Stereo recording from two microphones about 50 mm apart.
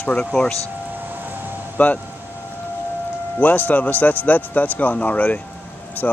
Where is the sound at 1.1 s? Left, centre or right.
Right.